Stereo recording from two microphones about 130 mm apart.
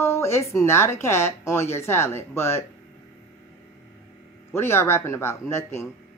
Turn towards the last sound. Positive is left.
turn(degrees=20)  # may be behind; listen again after turning